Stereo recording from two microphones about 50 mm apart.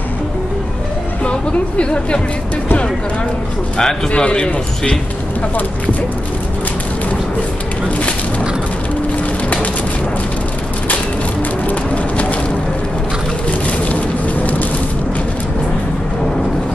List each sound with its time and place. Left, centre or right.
1.8 s speech: left
3.7 s speech: centre
11.6 s clip-clop: left
13.5 s vehicle: left